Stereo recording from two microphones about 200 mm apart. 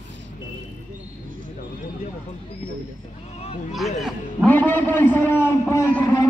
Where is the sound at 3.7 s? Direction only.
Centre (ahead or behind).